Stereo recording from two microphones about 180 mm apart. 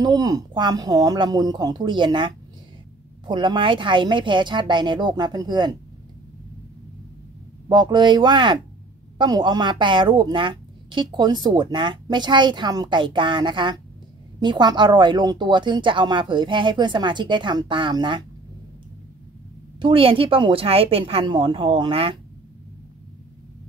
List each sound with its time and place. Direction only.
0.0 s speech: 20° right (ahead or behind)
7.6 s speech: 25° right (ahead or behind)
19.8 s a woman's voice: 30° right (ahead or behind)